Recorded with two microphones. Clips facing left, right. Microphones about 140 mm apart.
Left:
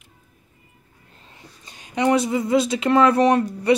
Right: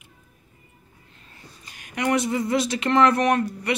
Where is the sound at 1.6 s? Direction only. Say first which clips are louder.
Left 5 dB; 25° left (ahead or behind).